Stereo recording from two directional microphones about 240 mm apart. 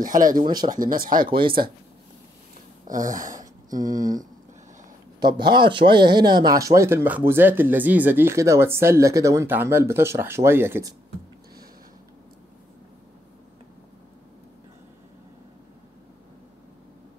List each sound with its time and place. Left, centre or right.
0.0 s speech: right
2.9 s a sound: right
3.8 s speech: right
5.2 s speech: centre